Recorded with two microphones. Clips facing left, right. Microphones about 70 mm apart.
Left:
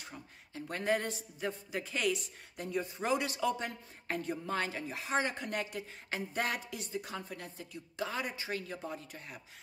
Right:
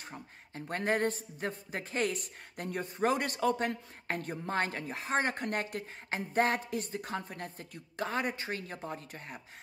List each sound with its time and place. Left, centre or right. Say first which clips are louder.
0.0 s speech: right 3 dB; right
6.0 s speech: right 6 dB; right